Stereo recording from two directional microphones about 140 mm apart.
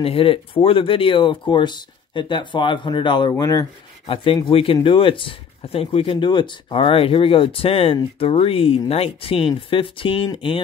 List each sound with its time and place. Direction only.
0.0 s speech: 40° left (ahead or behind)
4.1 s speech: 40° left (ahead or behind)